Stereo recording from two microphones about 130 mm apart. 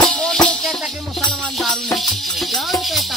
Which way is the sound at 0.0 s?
5° left (ahead or behind).